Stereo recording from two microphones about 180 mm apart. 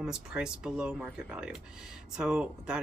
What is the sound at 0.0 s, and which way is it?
Speech, 5° right (ahead or behind).